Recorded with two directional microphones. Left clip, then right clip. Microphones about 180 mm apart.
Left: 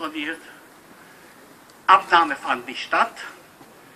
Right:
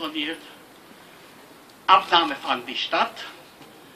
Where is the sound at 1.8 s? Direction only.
20° right (ahead or behind).